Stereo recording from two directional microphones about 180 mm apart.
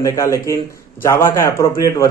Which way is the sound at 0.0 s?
20° left (ahead or behind).